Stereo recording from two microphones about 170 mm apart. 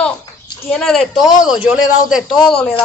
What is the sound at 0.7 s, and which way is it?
A man's voice, centre (ahead or behind).